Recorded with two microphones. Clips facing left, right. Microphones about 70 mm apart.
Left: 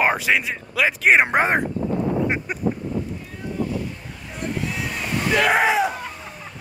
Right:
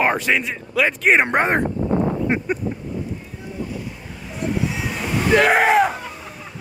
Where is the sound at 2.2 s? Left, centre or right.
Centre.